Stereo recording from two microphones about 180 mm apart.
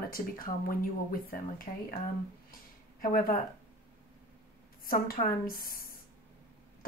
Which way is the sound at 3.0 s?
50° left (ahead or behind).